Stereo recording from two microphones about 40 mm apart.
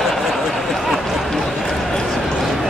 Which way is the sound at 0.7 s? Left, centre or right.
Centre.